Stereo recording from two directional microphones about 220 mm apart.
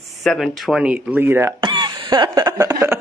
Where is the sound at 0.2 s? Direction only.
Centre (ahead or behind).